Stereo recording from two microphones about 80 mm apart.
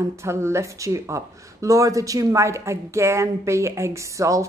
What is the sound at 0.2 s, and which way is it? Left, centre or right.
Speech, right.